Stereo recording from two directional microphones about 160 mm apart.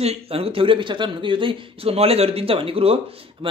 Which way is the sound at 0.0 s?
40° right (ahead or behind).